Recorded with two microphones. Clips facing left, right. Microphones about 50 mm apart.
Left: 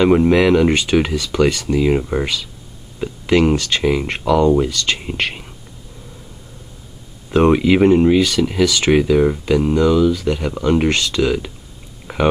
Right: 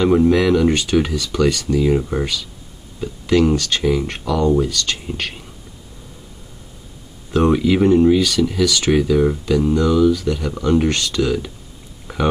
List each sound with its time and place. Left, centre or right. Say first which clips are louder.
0.0 s speech: left 2 dB; left
7.2 s speech: left 2 dB; left
12.1 s a sound: left 3 dB; left